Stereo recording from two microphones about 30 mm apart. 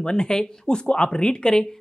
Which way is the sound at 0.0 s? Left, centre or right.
Left.